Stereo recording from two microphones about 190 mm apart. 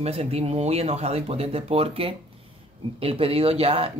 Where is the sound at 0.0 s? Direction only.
35° right (ahead or behind).